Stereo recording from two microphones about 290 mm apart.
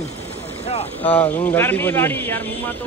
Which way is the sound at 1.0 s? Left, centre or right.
Centre.